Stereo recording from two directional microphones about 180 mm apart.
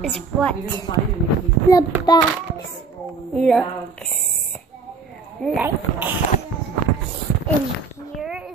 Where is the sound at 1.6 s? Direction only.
20° left (ahead or behind).